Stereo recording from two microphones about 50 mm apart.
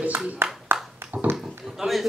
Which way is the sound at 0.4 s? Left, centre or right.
Right.